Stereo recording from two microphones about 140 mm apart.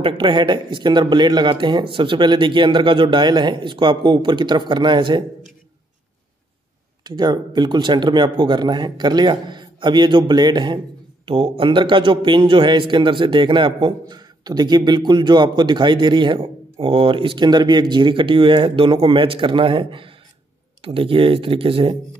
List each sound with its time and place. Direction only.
0.0 s speech: 35° right (ahead or behind)
7.1 s speech: 30° right (ahead or behind)